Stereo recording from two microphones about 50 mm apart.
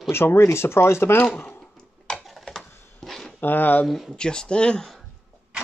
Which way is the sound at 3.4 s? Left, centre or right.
Left.